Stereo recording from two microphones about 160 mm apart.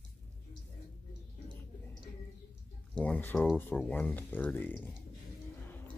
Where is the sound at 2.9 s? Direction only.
10° left (ahead or behind).